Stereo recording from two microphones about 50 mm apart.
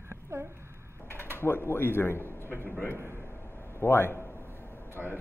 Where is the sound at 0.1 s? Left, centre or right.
Right.